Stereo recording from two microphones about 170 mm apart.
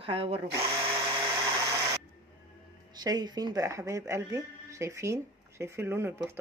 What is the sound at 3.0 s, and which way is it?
Speech, 25° right (ahead or behind).